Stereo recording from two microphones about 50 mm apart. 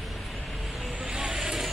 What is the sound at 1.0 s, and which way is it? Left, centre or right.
Vehicle, centre.